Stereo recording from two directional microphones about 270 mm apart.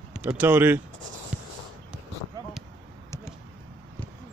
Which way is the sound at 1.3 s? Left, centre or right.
Centre.